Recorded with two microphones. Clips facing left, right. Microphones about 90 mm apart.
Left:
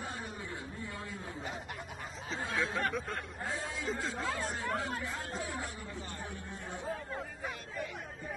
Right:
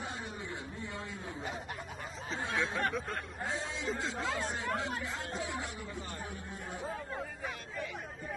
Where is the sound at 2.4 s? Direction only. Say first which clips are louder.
Even; 25° right (ahead or behind).